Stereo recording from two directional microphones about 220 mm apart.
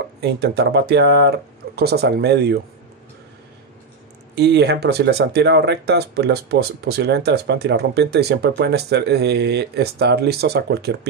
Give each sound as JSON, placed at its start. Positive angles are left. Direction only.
{"t": 0.2, "sound": "speech", "side_deg": -50}
{"t": 4.4, "sound": "speech", "side_deg": -50}